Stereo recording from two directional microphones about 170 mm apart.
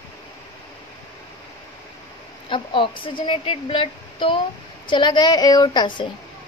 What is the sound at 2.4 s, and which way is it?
A woman's voice, 30° left (ahead or behind).